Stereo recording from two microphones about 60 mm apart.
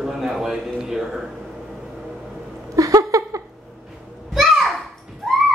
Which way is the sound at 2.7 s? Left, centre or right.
Right.